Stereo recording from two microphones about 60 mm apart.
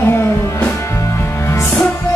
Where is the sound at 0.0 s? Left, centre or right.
Left.